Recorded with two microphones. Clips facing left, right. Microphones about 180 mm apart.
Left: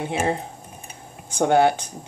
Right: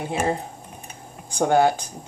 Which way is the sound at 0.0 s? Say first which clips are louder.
Even; 25° left (ahead or behind).